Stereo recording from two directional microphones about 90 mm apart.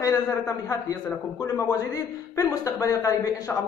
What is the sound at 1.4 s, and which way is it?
A man's voice, 40° left (ahead or behind).